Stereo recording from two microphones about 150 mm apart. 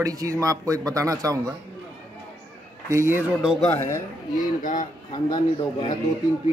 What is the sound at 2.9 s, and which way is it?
Speech, 20° right (ahead or behind).